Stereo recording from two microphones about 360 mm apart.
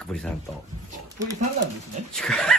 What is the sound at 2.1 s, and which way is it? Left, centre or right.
Speech, centre.